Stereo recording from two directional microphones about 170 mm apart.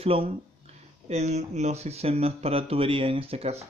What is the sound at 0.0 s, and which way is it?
Speech, 35° right (ahead or behind).